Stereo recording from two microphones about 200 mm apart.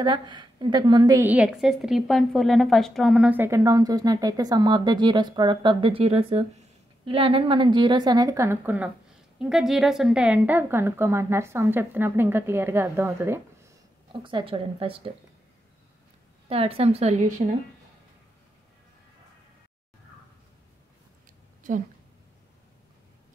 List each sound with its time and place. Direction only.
0.0 s a woman's voice: 25° right (ahead or behind)
14.2 s a woman's voice: 25° right (ahead or behind)
16.4 s a woman's voice: 30° right (ahead or behind)
21.7 s a woman's voice: 40° right (ahead or behind)